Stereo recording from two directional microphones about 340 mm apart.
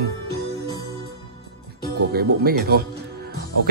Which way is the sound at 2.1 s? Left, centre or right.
Right.